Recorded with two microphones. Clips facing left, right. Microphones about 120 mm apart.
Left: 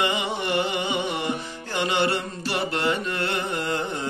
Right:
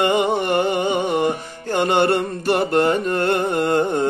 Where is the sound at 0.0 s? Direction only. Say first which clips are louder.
Right 8 dB; 50° right (ahead or behind).